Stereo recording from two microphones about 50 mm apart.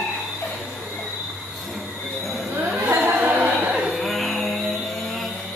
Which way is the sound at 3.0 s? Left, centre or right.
Right.